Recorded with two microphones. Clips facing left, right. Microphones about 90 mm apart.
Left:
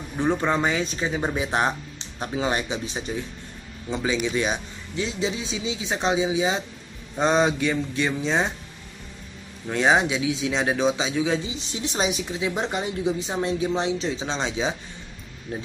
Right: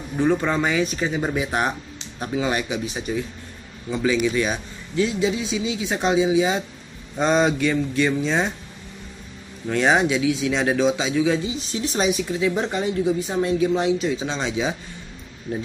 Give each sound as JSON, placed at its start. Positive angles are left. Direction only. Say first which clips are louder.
{"t": 0.2, "sound": "a woman's voice", "louder": "right 2 dB", "side_deg": 15}
{"t": 9.7, "sound": "a man's voice", "louder": "right 2 dB", "side_deg": 15}